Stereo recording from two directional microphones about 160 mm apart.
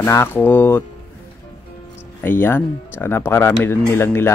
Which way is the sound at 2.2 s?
15° left (ahead or behind).